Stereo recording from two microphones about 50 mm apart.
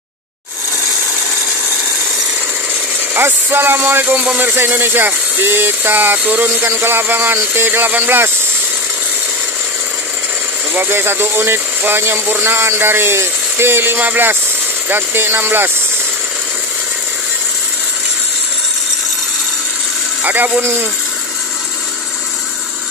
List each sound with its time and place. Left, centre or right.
3.2 s speech: right
10.7 s speech: right
13.9 s speech: right
20.2 s speech: right